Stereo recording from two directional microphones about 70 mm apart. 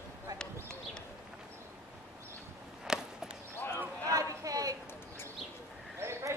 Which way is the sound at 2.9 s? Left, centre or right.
Centre.